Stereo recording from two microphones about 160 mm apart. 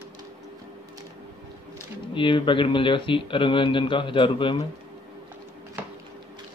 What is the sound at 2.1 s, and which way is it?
Speech, 30° left (ahead or behind).